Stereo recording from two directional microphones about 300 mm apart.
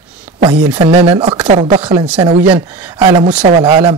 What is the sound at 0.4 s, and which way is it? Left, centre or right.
Speech, centre.